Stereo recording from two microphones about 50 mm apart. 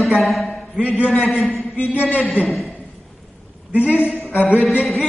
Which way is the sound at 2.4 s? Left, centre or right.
Centre.